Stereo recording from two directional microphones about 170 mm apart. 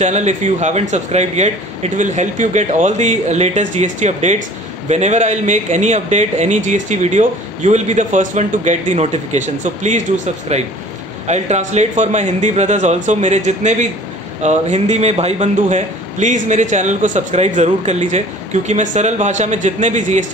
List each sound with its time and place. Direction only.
0.0 s a man's voice: 45° right (ahead or behind)